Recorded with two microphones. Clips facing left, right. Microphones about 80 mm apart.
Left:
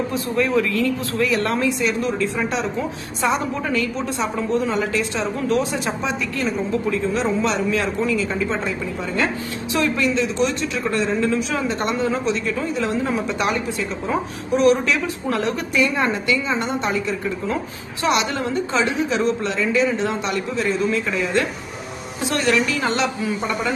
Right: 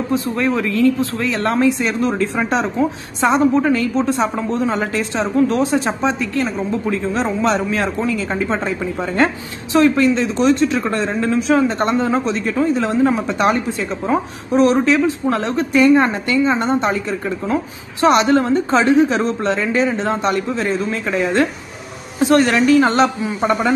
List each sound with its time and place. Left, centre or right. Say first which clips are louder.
0.1 s a woman's voice: right 4 dB; right
18.0 s a woman's voice: right 8 dB; right